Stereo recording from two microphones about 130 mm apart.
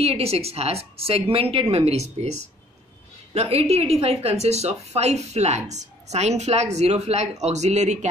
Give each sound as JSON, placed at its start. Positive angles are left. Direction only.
{"t": 0.0, "sound": "a woman's voice", "side_deg": -50}